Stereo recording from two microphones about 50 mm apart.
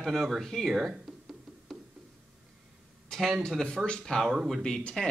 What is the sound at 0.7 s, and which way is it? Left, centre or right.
Speech, centre.